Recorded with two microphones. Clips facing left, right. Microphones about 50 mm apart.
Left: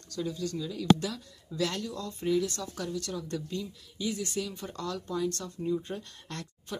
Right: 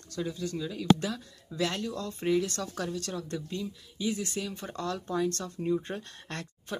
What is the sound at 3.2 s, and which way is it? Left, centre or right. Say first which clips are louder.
Speech: even; right.